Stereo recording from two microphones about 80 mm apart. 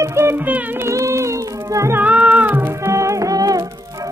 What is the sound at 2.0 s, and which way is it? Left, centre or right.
Music, centre.